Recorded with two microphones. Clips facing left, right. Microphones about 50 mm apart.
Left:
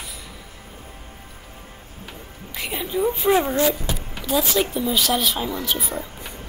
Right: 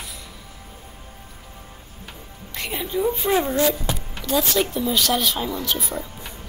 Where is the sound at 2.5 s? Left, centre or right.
Centre.